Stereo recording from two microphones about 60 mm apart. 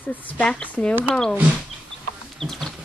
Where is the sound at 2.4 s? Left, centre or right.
Centre.